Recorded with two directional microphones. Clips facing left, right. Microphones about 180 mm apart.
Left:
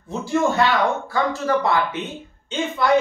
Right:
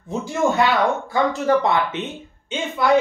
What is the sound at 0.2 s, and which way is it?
Speech, 15° right (ahead or behind).